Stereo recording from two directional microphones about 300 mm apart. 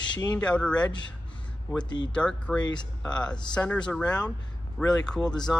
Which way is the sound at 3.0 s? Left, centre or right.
Centre.